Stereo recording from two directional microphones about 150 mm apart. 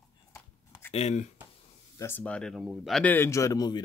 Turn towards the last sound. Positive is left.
turn(degrees=25)  # may be behind; listen again after turning